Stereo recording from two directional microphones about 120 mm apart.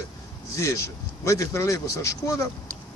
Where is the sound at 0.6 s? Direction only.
25° left (ahead or behind).